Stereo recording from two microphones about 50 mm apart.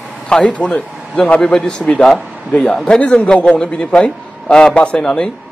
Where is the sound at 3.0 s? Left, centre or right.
Left.